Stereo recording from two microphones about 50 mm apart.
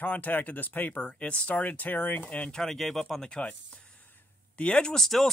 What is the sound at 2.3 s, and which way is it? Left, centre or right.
Speech, centre.